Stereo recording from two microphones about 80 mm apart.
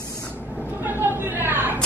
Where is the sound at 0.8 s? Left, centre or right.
Right.